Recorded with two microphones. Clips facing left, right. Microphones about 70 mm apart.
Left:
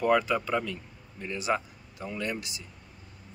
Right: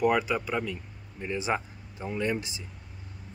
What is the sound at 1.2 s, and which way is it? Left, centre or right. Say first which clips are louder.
Speech: even; right.